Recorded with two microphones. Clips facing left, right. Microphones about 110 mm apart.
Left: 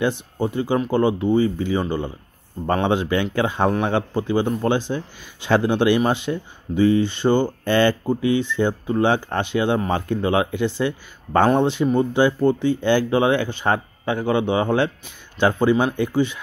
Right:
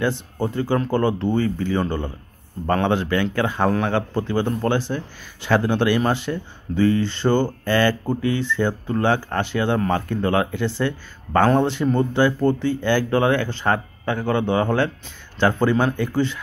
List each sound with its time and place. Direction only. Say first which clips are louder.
0.0 s speech: left 1 dB; 15° left (ahead or behind)